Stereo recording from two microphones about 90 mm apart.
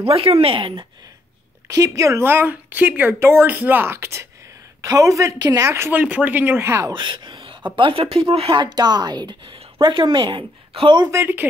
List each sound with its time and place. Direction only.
0.0 s speech: 90° right
1.7 s a woman's voice: 40° right (ahead or behind)
5.7 s a woman's voice: 30° right (ahead or behind)
5.9 s a woman's voice: 15° right (ahead or behind); by 6.9 s 30° right (ahead or behind)
6.9 s speech: 60° right (ahead or behind); by 11.0 s 90° right
11.1 s speech: 30° right (ahead or behind)